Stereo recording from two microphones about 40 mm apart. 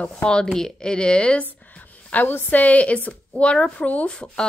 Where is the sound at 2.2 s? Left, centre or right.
Left.